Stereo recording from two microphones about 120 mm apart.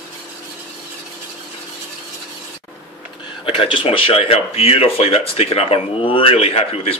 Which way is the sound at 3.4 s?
45° left (ahead or behind).